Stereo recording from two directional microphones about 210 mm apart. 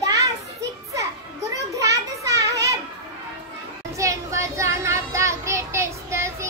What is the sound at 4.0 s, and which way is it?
Child singing, 15° right (ahead or behind).